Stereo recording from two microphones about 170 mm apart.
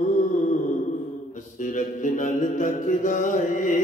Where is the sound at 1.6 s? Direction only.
50° left (ahead or behind).